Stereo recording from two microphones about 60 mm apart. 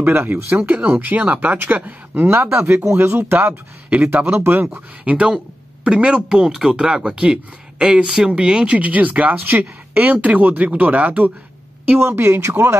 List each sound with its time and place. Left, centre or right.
0.0 s speech: right
3.9 s speech: right
4.3 s speech: right
4.7 s speech: centre
12.0 s speech: right